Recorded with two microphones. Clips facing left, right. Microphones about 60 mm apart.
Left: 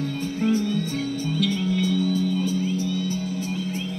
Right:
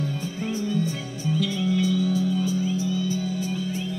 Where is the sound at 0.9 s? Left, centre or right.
Left.